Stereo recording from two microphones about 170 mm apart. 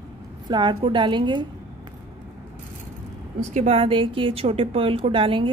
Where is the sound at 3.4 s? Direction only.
45° right (ahead or behind).